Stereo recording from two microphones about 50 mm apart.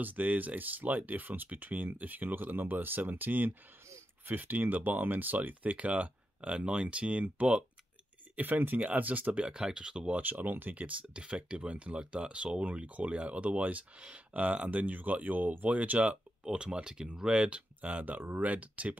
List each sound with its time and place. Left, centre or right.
0.0 s speech: right
8.4 s speech: right
9.5 s speech: centre
10.2 s speech: right